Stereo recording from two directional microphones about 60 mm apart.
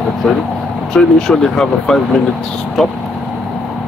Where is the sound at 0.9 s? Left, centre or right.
Centre.